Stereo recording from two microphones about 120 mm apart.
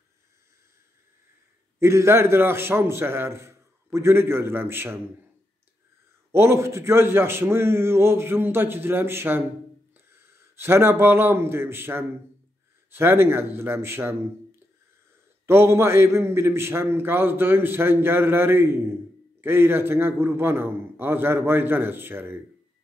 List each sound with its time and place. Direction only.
1.8 s a man's voice: 20° right (ahead or behind)
6.3 s a man's voice: 20° right (ahead or behind)
10.5 s a man's voice: 20° right (ahead or behind)
15.4 s a man's voice: 20° right (ahead or behind)